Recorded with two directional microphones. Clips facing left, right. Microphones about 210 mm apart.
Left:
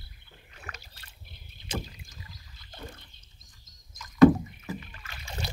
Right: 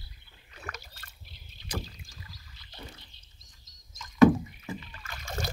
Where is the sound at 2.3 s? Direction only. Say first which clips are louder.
Left 2 dB; 50° left (ahead or behind).